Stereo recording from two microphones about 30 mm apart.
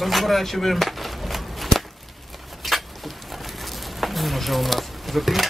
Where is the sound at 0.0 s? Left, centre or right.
Centre.